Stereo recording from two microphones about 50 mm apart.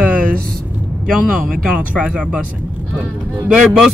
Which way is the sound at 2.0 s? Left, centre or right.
Centre.